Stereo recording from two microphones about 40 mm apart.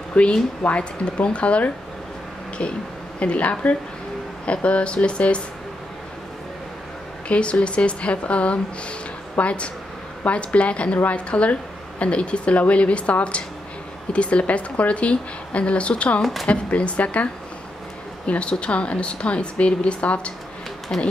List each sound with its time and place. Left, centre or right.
0.1 s speech: left
7.2 s speech: left